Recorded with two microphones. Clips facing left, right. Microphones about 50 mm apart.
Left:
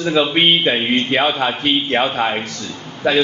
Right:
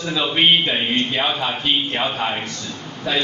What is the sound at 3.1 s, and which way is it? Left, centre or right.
Speech, left.